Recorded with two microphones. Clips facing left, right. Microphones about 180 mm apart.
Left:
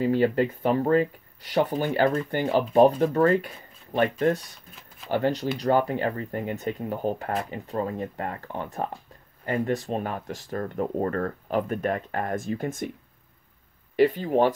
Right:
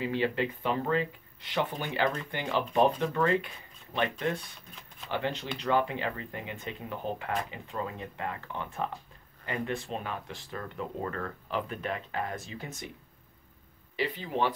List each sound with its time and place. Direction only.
0.0 s speech: 45° left (ahead or behind)
13.9 s speech: 45° left (ahead or behind)